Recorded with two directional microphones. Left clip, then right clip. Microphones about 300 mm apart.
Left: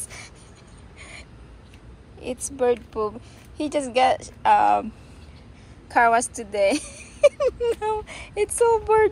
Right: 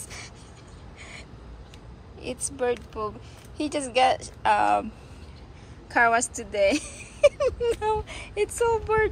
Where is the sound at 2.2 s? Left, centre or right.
Centre.